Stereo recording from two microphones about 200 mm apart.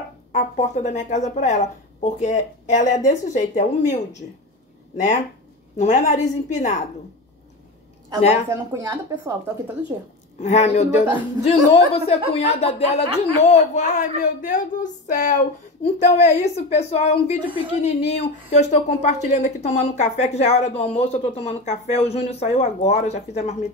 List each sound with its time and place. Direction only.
0.3 s speech: 35° left (ahead or behind)
5.8 s speech: 35° left (ahead or behind)
8.5 s a woman's voice: 15° right (ahead or behind)
10.4 s speech: 35° left (ahead or behind)
17.5 s a woman's voice: 25° right (ahead or behind)
17.7 s speech: 35° left (ahead or behind)